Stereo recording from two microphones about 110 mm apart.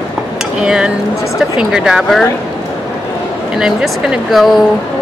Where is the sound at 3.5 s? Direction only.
5° right (ahead or behind).